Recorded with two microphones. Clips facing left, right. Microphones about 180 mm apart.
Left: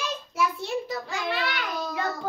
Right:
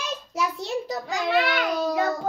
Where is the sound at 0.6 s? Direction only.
40° right (ahead or behind).